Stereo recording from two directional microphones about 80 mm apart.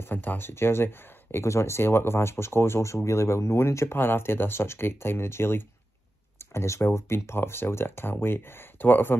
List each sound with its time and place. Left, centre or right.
0.0 s speech: left